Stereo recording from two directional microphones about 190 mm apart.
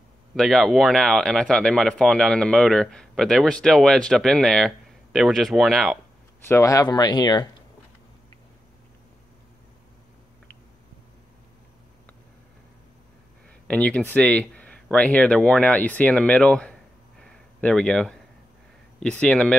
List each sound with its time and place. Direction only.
0.4 s speech: centre (ahead or behind)
6.4 s speech: 15° left (ahead or behind)
13.7 s speech: 5° left (ahead or behind)
17.2 s a sound: 5° left (ahead or behind)
18.9 s speech: 5° left (ahead or behind)